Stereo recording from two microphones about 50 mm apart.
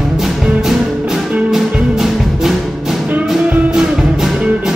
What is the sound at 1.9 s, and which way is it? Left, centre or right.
Music, centre.